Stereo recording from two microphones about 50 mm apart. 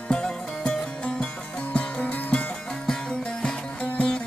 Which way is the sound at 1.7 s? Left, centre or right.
Left.